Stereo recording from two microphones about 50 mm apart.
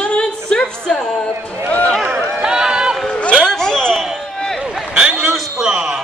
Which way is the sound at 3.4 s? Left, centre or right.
Centre.